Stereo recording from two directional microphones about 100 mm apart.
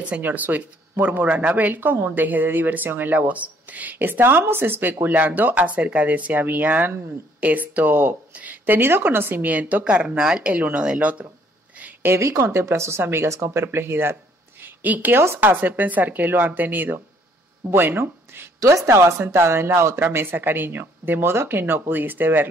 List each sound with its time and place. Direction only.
0.0 s speech: 15° right (ahead or behind)
11.8 s speech: 25° right (ahead or behind)